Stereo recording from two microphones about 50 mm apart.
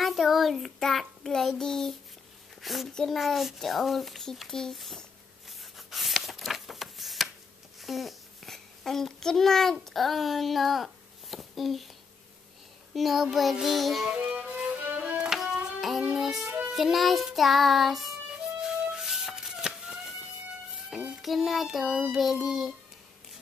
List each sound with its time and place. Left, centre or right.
0.0 s child singing: centre
2.6 s a child's voice: centre
2.9 s child singing: centre
3.2 s speech: centre
5.5 s a sound: centre
7.8 s a child's voice: centre
12.9 s speech: centre
14.2 s music: right
15.3 s music: centre
16.7 s speech: centre
18.6 s music: centre
21.2 s speech: centre